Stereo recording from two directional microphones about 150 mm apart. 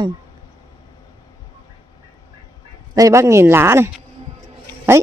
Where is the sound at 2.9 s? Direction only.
20° right (ahead or behind).